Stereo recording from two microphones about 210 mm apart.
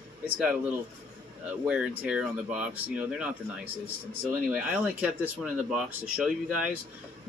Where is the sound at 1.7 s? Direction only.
5° right (ahead or behind).